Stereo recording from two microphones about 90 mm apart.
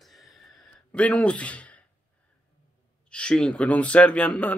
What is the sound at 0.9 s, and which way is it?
Speech, 15° left (ahead or behind).